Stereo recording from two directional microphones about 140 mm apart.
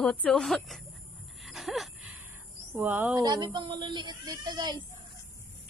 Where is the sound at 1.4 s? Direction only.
Centre (ahead or behind).